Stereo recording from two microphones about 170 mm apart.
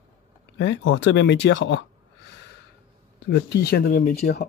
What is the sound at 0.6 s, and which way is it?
Speech, 90° left.